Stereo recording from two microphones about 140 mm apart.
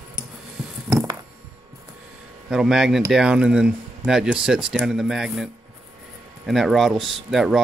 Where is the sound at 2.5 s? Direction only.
5° right (ahead or behind).